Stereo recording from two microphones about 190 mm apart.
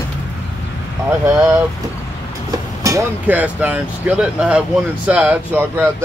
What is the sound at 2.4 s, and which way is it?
Speech, 15° right (ahead or behind).